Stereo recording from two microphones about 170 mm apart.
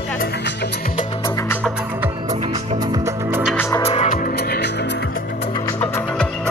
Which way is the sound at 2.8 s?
20° right (ahead or behind).